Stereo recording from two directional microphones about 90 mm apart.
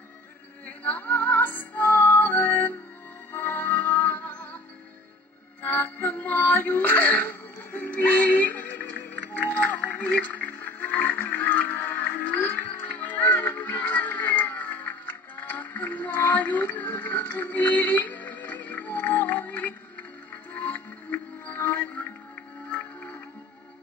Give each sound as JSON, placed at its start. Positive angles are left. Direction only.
{"t": 0.8, "sound": "music", "side_deg": 20}
{"t": 5.6, "sound": "music", "side_deg": 20}